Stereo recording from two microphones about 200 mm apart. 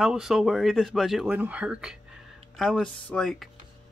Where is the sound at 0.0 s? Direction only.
5° right (ahead or behind).